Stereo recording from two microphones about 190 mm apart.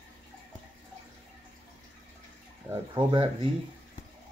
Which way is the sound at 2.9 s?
25° right (ahead or behind).